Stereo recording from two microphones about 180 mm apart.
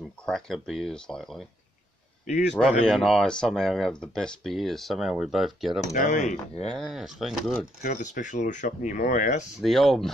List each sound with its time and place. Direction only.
0.2 s speech: centre (ahead or behind)
2.2 s speech: 40° left (ahead or behind)
2.9 s speech: centre (ahead or behind)
5.9 s speech: 45° left (ahead or behind)
6.7 s speech: centre (ahead or behind)
7.8 s speech: 45° left (ahead or behind)
9.6 s speech: centre (ahead or behind)